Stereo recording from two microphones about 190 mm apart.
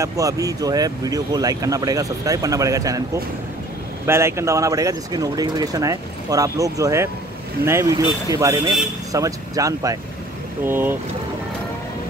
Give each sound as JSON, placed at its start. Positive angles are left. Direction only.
{"t": 0.0, "sound": "speech", "side_deg": -15}
{"t": 4.0, "sound": "speech", "side_deg": -15}